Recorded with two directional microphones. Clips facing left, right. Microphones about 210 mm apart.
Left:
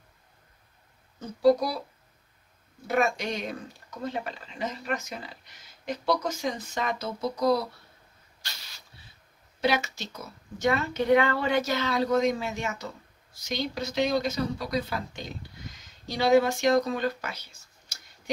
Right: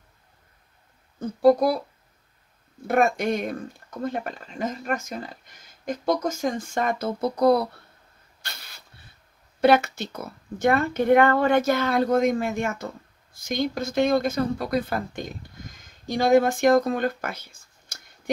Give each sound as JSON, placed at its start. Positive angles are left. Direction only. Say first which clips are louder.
{"t": 1.2, "sound": "speech", "louder": "right 4 dB", "side_deg": -50}
{"t": 2.9, "sound": "speech", "louder": "right 5 dB", "side_deg": -50}
{"t": 8.4, "sound": "a sound", "louder": "right 4 dB", "side_deg": -55}
{"t": 9.6, "sound": "speech", "louder": "right 8 dB", "side_deg": -55}